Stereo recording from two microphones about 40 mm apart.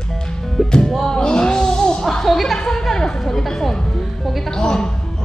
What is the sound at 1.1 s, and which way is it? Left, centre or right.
Music, centre.